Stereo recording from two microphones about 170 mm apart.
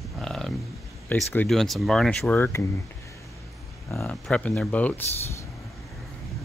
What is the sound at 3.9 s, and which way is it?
Speech, 15° left (ahead or behind).